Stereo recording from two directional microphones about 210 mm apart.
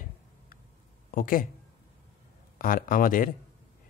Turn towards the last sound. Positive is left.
turn(degrees=40)  # may be behind; listen again after turning